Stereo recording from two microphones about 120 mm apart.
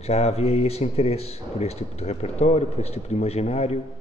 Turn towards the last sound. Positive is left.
turn(degrees=60)  # may be behind; listen again after turning